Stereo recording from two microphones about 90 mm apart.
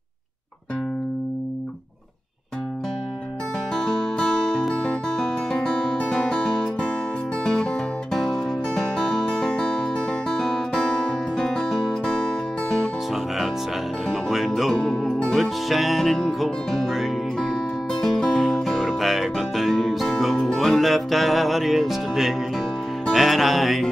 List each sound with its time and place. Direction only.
3.7 s music: 5° left (ahead or behind)
14.0 s music: centre (ahead or behind)